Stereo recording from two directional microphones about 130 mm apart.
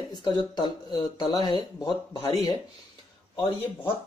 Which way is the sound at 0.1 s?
35° left (ahead or behind).